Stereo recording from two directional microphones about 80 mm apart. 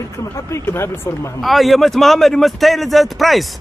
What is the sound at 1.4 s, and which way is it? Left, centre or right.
Speech, centre.